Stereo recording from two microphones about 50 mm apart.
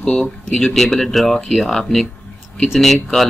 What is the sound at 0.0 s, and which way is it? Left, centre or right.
Speech, centre.